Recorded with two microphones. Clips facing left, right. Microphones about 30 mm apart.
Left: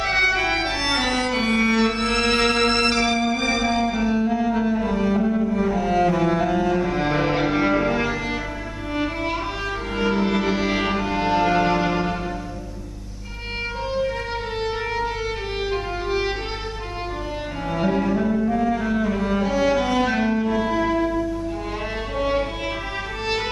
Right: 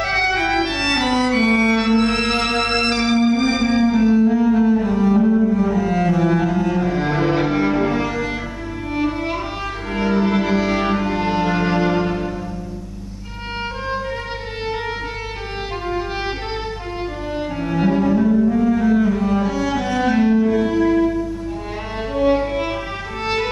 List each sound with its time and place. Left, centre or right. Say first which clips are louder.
0.0 s music: right 1 dB; centre
0.7 s organ: right 4 dB; centre
1.8 s music: right 4 dB; centre
2.0 s music: right 1 dB; centre
2.9 s music: right 3 dB; centre
3.3 s music: right 4 dB; centre
3.7 s cello: right 6 dB; centre
8.9 s violin: right 3 dB; centre
9.9 s music: right 3 dB; centre
16.1 s music: left 1 dB; centre
17.6 s cello: right 4 dB; centre
22.2 s music: right 6 dB; centre